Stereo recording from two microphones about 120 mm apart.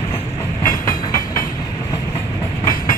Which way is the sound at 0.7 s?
30° left (ahead or behind).